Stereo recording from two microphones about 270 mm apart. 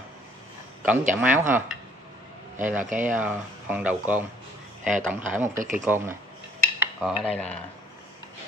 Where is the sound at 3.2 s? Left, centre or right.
Centre.